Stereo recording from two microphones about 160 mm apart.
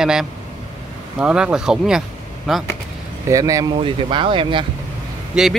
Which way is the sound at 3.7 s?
30° right (ahead or behind).